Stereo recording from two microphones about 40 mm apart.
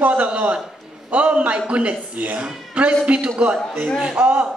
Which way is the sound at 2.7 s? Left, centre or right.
Right.